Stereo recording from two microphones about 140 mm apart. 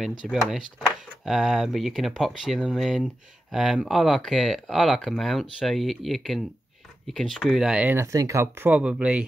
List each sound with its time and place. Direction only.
0.3 s speech: centre (ahead or behind)
7.9 s speech: 20° right (ahead or behind)
8.6 s speech: 10° right (ahead or behind)